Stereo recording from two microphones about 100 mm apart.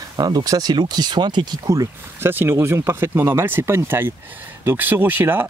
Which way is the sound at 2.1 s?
25° right (ahead or behind).